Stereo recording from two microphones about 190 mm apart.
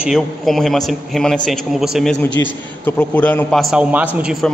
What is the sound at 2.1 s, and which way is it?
Speech, 70° left (ahead or behind).